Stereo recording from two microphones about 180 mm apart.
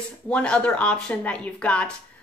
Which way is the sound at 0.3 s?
5° left (ahead or behind).